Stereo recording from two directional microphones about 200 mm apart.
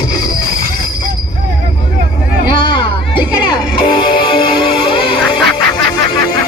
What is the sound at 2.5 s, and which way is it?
Music, 25° left (ahead or behind).